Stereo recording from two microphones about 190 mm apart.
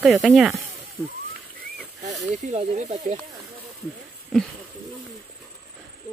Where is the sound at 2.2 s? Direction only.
40° right (ahead or behind).